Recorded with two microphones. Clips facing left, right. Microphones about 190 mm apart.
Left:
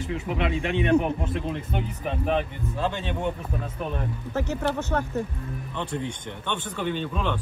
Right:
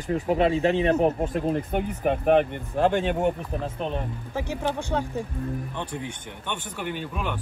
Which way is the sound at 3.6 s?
20° right (ahead or behind).